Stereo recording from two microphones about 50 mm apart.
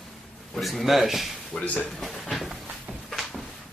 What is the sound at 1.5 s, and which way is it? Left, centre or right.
Speech, left.